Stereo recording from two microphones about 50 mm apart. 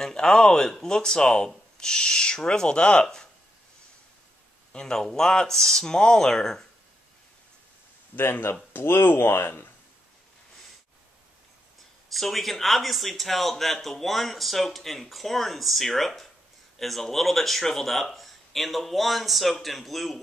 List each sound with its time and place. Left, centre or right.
0.0 s speech: centre
4.7 s speech: centre
8.2 s speech: left
12.1 s a man's voice: centre